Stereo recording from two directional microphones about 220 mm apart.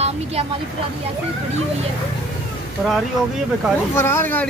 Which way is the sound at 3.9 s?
10° left (ahead or behind).